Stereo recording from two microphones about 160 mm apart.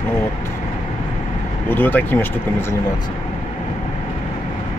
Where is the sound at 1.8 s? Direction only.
10° left (ahead or behind).